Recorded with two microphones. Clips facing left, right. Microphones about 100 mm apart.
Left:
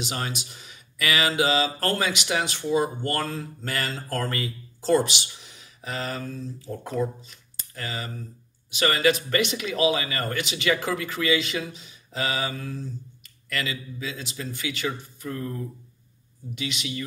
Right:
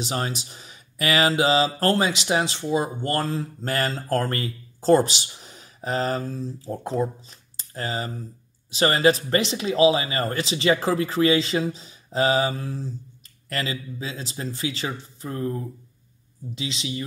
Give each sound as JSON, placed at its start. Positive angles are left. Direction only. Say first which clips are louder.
{"t": 0.0, "sound": "speech", "louder": "right 3 dB", "side_deg": -35}